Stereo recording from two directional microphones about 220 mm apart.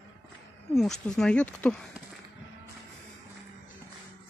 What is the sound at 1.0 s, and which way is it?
Speech, 5° left (ahead or behind).